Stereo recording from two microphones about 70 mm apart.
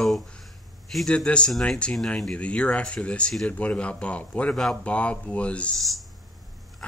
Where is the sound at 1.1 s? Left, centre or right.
Centre.